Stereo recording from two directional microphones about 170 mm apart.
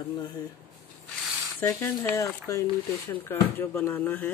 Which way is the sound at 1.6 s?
15° left (ahead or behind).